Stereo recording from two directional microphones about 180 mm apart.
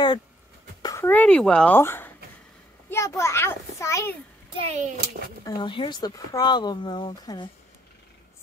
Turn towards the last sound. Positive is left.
turn(degrees=25)  # may be behind; listen again after turning